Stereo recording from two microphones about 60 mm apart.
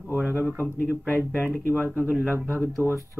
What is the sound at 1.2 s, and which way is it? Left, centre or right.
Speech, left.